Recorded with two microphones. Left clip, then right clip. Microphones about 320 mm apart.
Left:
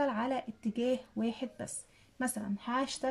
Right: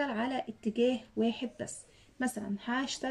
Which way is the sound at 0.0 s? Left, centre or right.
Left.